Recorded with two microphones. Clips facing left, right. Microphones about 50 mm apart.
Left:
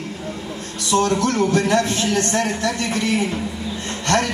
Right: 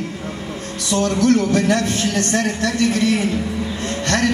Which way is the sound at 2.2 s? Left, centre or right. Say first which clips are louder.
Right 2 dB; left.